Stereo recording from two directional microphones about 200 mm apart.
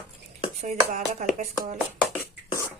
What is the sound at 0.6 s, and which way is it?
Speech, 40° right (ahead or behind).